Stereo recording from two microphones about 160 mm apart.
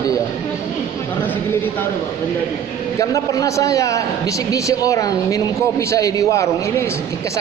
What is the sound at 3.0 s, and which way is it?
A man's voice, 20° left (ahead or behind).